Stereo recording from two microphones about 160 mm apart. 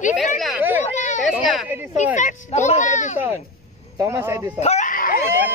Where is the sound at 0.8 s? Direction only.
50° left (ahead or behind).